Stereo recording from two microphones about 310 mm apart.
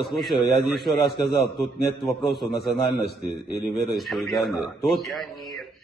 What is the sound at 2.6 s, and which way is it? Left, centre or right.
Speech, left.